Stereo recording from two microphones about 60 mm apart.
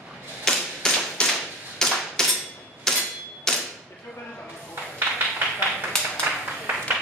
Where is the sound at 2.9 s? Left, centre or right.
Centre.